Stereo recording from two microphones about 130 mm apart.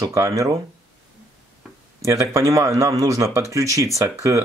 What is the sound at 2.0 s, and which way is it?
Speech, 25° right (ahead or behind).